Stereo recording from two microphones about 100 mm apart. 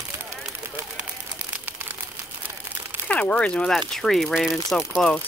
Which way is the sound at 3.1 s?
10° left (ahead or behind).